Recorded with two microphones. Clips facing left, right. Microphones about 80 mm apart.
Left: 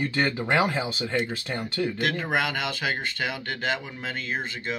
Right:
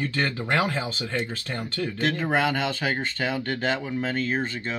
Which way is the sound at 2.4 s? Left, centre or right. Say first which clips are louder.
Right 3 dB; right.